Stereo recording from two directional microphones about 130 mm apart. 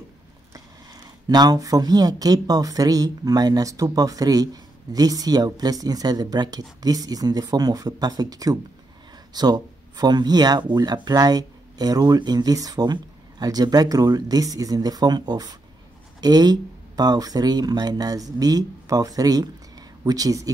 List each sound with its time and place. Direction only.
1.3 s speech: 30° right (ahead or behind)